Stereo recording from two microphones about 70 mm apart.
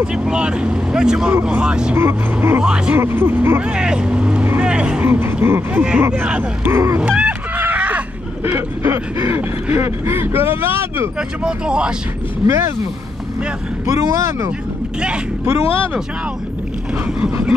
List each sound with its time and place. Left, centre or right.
0.0 s speech: centre
2.0 s speech: right
2.6 s speech: centre
3.0 s speech: right
3.6 s speech: centre
4.6 s vehicle: centre
5.0 s creak: right
5.8 s speech: centre
6.7 s speech: right
7.0 s a sound: centre
8.5 s speech: right
11.1 s speech: centre
12.4 s speech: right
13.8 s speech: right